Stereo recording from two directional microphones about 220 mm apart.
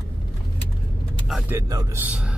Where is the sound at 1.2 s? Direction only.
Centre (ahead or behind).